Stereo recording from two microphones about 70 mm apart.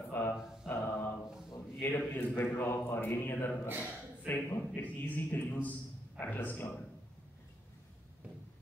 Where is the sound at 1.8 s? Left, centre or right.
Left.